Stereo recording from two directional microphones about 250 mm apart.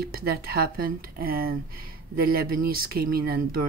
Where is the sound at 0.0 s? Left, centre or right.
Right.